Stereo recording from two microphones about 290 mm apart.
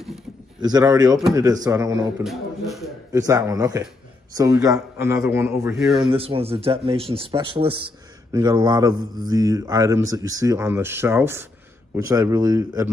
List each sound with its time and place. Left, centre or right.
0.6 s a man's voice: centre
3.1 s speech: centre
5.9 s speech: centre